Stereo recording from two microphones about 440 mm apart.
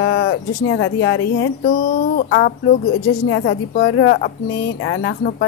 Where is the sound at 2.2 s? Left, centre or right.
Left.